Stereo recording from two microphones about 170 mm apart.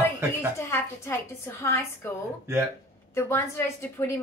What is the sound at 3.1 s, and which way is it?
Speech, 15° left (ahead or behind).